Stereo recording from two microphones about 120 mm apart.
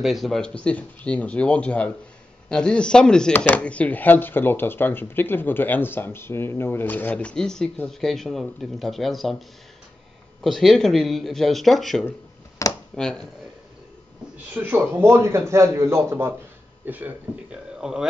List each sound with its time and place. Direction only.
0.0 s speech: centre (ahead or behind)
10.4 s speech: centre (ahead or behind)
12.6 s a sound: 25° left (ahead or behind)
12.9 s speech: 5° left (ahead or behind)
14.5 s speech: 15° right (ahead or behind)